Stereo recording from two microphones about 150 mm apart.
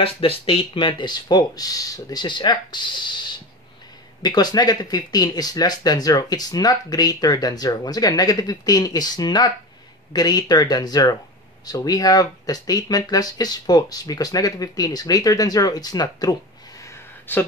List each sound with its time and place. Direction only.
0.0 s speech: 40° left (ahead or behind)
4.2 s speech: 25° left (ahead or behind)
16.8 s a sound: 15° left (ahead or behind)